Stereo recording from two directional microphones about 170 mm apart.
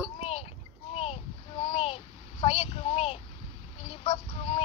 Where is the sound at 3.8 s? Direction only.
30° left (ahead or behind).